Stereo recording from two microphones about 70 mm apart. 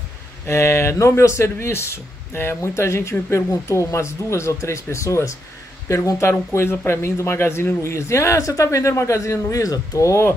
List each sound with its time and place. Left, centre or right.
0.5 s speech: left